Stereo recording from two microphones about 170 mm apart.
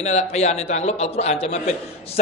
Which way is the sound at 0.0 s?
40° left (ahead or behind).